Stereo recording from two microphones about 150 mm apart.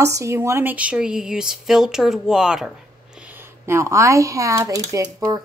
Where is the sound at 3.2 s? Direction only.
15° right (ahead or behind).